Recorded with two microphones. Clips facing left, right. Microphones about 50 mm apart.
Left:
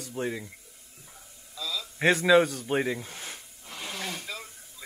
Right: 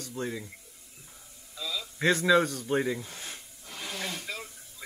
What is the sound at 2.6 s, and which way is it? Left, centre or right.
Speech, centre.